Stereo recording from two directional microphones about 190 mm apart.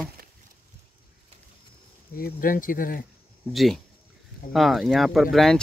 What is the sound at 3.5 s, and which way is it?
Speech, centre (ahead or behind).